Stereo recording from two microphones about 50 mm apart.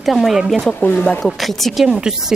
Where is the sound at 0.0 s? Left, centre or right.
Centre.